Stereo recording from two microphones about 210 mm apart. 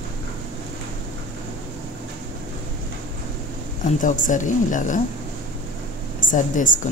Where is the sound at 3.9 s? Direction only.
35° left (ahead or behind).